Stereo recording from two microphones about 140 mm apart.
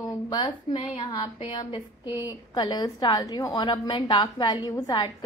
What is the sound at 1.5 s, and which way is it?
A woman's voice, 35° left (ahead or behind).